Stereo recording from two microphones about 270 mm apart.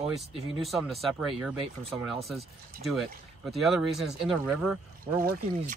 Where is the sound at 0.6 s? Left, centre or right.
Centre.